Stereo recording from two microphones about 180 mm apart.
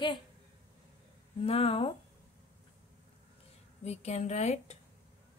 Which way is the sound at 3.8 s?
35° left (ahead or behind).